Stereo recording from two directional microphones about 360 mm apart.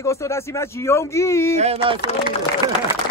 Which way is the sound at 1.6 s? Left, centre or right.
Centre.